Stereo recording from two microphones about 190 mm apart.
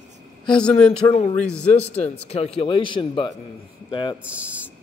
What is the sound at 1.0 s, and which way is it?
Speech, 20° left (ahead or behind).